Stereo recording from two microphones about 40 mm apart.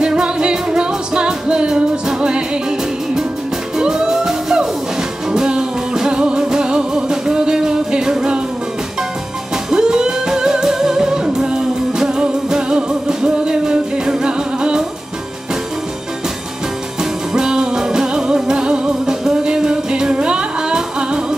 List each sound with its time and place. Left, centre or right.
0.0 s music: right
3.7 s music: centre
9.7 s music: centre
17.3 s music: centre